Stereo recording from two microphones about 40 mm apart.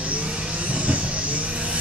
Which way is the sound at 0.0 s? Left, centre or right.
Right.